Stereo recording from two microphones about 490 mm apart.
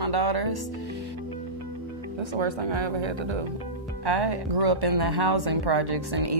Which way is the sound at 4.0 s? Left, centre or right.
Right.